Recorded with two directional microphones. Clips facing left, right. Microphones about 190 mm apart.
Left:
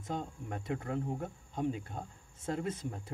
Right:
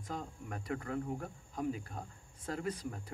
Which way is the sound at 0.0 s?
25° left (ahead or behind).